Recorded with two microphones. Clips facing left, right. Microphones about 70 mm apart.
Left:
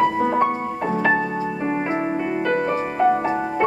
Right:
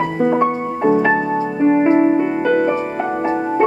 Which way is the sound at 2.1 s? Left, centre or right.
Centre.